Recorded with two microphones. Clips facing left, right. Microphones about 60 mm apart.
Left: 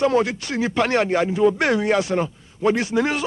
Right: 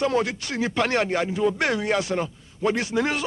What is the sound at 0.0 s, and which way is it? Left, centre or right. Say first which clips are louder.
Speech: left 4 dB; left.